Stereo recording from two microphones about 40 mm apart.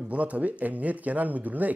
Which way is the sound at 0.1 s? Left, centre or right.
Right.